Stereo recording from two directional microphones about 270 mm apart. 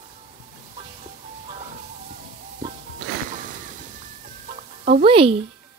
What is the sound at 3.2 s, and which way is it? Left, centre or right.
Music, right.